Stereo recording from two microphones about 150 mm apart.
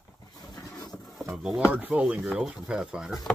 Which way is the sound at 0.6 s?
20° left (ahead or behind).